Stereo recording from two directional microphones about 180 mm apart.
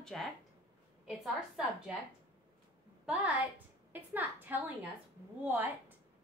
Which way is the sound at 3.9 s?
10° right (ahead or behind).